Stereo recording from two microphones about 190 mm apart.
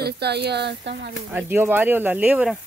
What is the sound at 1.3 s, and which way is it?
Speech, 10° right (ahead or behind).